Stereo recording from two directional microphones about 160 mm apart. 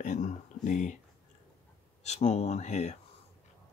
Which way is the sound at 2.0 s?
45° left (ahead or behind).